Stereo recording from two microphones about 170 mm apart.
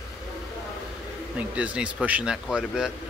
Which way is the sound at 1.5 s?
5° right (ahead or behind).